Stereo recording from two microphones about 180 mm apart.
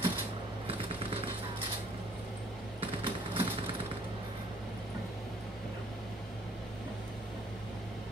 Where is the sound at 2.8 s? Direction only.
30° right (ahead or behind).